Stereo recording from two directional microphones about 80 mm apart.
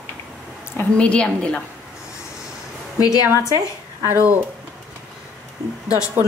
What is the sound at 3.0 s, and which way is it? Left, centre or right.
Speech, left.